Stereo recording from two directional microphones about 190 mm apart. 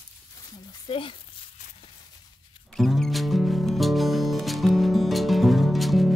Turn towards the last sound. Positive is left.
turn(degrees=0)  # may be behind; listen again after turning